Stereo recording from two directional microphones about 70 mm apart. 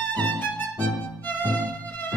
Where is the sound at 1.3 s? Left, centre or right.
Left.